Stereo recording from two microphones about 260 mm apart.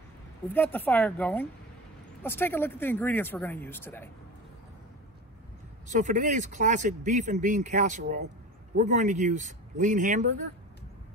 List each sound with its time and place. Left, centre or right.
0.6 s speech: centre
5.9 s speech: right